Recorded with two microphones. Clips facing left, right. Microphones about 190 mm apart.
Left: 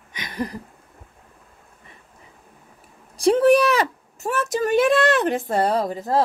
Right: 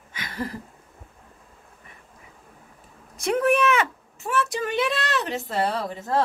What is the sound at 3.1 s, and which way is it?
Speech, 35° left (ahead or behind).